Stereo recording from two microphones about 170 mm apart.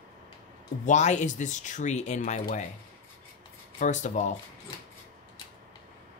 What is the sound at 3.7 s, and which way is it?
Speech, 45° left (ahead or behind).